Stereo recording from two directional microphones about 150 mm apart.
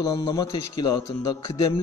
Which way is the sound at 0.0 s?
25° left (ahead or behind).